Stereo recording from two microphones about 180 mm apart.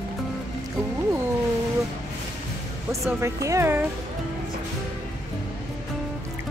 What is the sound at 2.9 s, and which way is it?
Speech, 15° right (ahead or behind).